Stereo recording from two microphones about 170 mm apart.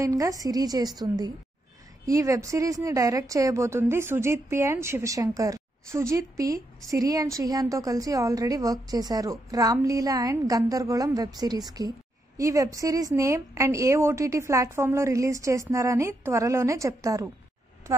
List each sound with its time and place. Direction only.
0.0 s a woman's voice: 20° right (ahead or behind)